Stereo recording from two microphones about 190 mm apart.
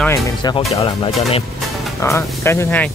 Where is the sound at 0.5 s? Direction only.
30° left (ahead or behind).